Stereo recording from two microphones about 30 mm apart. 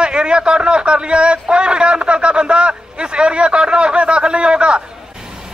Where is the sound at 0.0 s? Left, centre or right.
Right.